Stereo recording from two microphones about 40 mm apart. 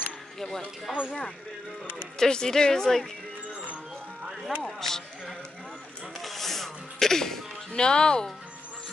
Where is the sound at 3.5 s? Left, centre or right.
Right.